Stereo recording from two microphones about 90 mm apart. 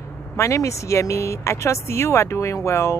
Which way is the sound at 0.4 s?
35° left (ahead or behind).